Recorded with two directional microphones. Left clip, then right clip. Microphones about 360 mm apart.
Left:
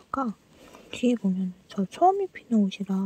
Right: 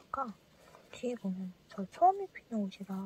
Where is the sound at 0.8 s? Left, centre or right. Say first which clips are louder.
Left 12 dB; left.